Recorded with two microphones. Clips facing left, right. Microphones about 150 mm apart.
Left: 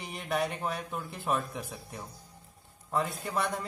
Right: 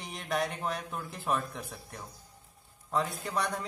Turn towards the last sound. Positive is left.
turn(degrees=0)  # may be behind; listen again after turning